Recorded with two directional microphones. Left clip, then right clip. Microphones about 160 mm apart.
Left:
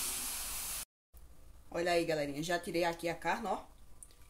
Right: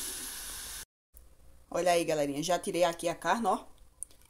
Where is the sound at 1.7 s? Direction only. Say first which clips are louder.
Right 5 dB; 45° right (ahead or behind).